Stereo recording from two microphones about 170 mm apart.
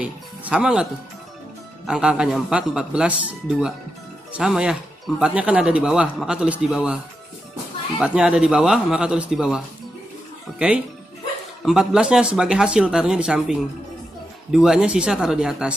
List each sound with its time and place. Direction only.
0.0 s music: 5° right (ahead or behind)
1.9 s speech: 5° right (ahead or behind)
8.0 s speech: 5° right (ahead or behind)
11.6 s speech: 5° right (ahead or behind)